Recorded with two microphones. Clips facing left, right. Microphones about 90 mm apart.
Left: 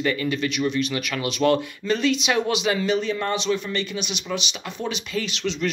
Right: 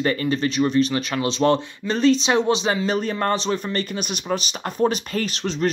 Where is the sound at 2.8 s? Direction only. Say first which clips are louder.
Right 1 dB; 45° right (ahead or behind).